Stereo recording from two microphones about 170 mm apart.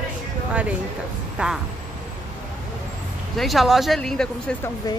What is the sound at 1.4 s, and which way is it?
Speech, 5° right (ahead or behind).